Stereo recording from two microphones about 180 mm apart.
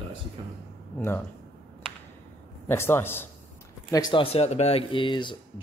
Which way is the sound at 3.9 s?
25° left (ahead or behind).